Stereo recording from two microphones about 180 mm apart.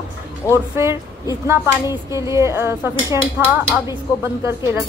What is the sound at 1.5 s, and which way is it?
A woman's voice, 15° right (ahead or behind).